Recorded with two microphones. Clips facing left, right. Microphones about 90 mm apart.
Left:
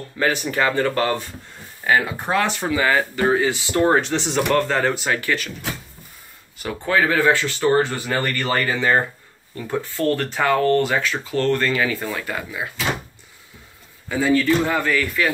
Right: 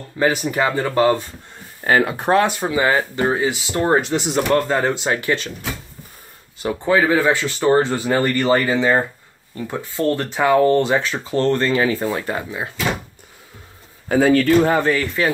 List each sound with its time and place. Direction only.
0.2 s speech: 20° right (ahead or behind)
1.9 s speech: 50° right (ahead or behind)
2.7 s speech: 25° right (ahead or behind)
6.6 s speech: 20° right (ahead or behind)
14.0 s speech: 60° right (ahead or behind)
14.7 s speech: 30° right (ahead or behind)